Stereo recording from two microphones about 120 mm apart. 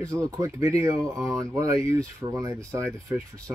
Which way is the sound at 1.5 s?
25° right (ahead or behind).